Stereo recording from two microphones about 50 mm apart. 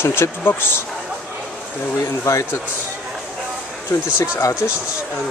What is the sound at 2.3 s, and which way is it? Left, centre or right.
Speech, left.